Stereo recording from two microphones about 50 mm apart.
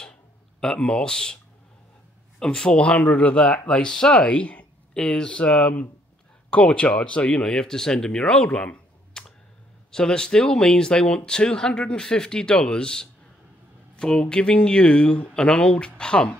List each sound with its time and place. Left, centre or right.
0.6 s a man's voice: centre
2.8 s speech: left
8.5 s speech: left
9.1 s a sound: centre
9.8 s speech: centre